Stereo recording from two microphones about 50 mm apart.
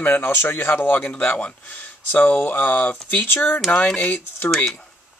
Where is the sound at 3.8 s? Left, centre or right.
Left.